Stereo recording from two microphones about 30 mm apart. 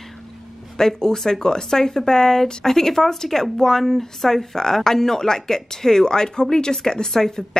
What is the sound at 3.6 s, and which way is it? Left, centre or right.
A woman's voice, centre.